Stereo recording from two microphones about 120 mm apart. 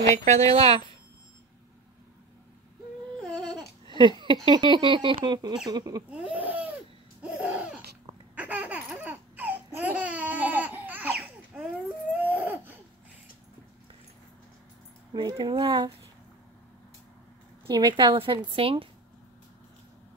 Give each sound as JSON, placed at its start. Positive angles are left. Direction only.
{"t": 0.1, "sound": "a woman's voice", "side_deg": -75}
{"t": 0.5, "sound": "speech", "side_deg": -55}
{"t": 3.2, "sound": "a sound", "side_deg": 5}
{"t": 4.0, "sound": "speech", "side_deg": -40}
{"t": 6.3, "sound": "a sound", "side_deg": -15}
{"t": 7.2, "sound": "laughter", "side_deg": -10}
{"t": 12.2, "sound": "baby cry", "side_deg": -15}
{"t": 15.1, "sound": "speech", "side_deg": -40}
{"t": 17.6, "sound": "speech", "side_deg": -35}